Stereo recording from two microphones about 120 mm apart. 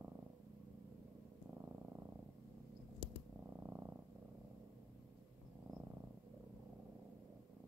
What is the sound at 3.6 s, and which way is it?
Purr, 20° right (ahead or behind).